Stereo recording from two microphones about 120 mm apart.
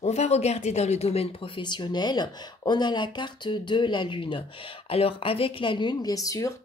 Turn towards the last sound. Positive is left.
turn(degrees=30)  # may be behind; listen again after turning